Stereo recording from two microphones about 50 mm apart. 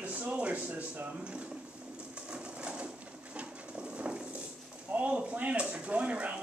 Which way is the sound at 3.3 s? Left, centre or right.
Right.